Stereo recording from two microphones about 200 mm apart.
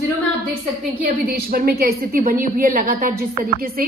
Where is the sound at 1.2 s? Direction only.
50° right (ahead or behind).